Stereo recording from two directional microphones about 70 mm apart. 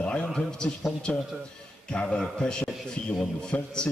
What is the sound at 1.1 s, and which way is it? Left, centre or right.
A man's voice, left.